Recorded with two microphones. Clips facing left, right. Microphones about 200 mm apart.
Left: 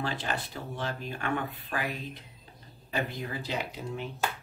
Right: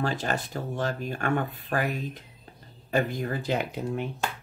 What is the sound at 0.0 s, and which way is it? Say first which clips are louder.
Speech: right 5 dB; 45° right (ahead or behind).